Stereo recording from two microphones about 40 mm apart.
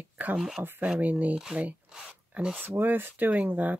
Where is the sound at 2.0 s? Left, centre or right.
Right.